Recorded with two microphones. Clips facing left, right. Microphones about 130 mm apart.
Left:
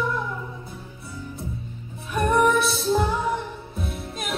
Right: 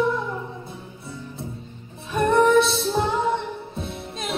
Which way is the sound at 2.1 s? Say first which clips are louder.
Right 3 dB; 25° right (ahead or behind).